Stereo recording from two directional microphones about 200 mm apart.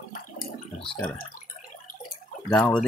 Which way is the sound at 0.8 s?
5° left (ahead or behind).